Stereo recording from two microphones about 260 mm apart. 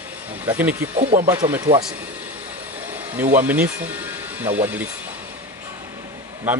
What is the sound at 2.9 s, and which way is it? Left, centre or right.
Speech, centre.